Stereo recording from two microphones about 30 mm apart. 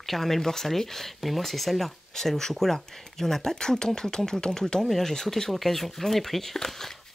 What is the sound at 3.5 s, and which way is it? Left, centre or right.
Speech, left.